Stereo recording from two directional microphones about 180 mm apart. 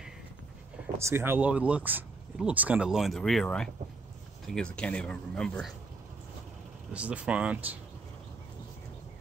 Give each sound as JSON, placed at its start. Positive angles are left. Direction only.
{"t": 0.9, "sound": "speech", "side_deg": -15}
{"t": 6.9, "sound": "speech", "side_deg": -5}